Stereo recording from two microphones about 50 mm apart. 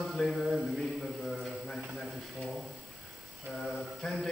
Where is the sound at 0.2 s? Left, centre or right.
Centre.